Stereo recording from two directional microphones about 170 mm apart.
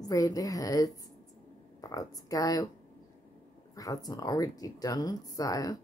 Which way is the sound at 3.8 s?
20° left (ahead or behind).